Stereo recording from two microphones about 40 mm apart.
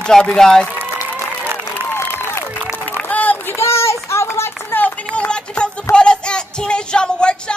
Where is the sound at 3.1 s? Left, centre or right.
Left.